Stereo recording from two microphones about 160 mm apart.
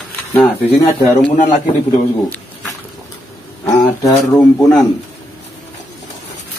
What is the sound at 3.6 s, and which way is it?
Speech, 20° left (ahead or behind).